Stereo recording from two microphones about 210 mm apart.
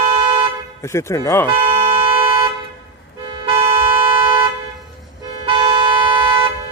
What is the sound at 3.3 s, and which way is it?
Toot, 25° right (ahead or behind).